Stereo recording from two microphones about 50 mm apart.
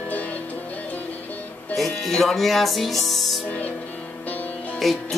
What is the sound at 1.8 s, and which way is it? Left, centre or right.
Speech, centre.